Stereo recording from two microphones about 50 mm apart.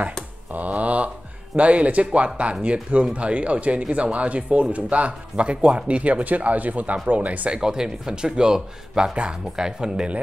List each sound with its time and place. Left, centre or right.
0.5 s a sound: right
1.6 s speech: right
7.6 s speech: centre